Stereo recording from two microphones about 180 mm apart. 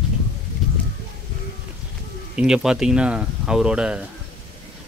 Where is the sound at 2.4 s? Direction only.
5° right (ahead or behind).